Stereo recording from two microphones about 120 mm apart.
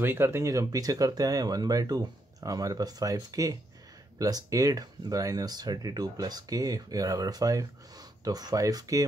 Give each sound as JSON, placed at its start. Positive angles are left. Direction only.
{"t": 0.0, "sound": "speech", "side_deg": -20}